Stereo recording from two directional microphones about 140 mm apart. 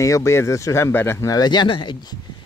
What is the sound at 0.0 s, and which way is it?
Speech, 20° left (ahead or behind).